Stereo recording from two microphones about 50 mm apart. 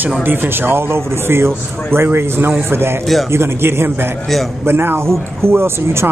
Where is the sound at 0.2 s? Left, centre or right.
Right.